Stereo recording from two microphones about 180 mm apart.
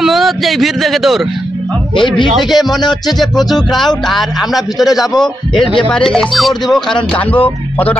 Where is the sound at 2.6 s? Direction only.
25° left (ahead or behind).